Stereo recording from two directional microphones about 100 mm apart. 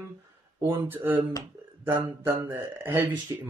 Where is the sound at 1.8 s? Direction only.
25° right (ahead or behind).